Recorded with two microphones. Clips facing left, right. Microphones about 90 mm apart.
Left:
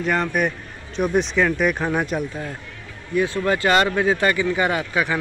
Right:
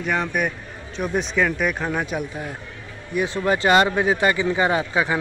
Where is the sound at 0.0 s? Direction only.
Centre (ahead or behind).